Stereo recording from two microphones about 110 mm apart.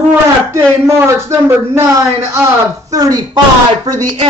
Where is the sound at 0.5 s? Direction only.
25° right (ahead or behind).